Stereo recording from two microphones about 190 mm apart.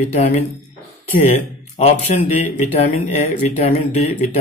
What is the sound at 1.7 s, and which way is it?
Speech, 35° left (ahead or behind).